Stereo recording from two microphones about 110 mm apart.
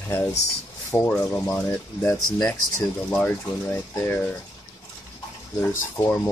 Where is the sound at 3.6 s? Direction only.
20° left (ahead or behind).